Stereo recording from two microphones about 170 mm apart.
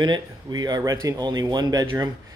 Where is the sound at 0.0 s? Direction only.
25° right (ahead or behind).